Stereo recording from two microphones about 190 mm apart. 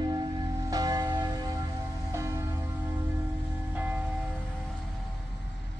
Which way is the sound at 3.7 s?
10° right (ahead or behind).